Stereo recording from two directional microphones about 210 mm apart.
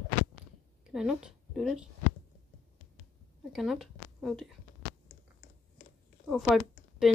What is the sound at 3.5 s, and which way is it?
Speech, centre (ahead or behind).